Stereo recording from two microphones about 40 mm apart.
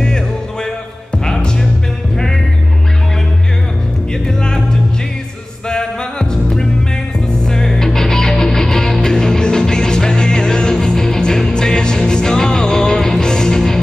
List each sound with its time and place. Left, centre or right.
1.1 s music: centre
4.1 s music: centre
5.7 s music: centre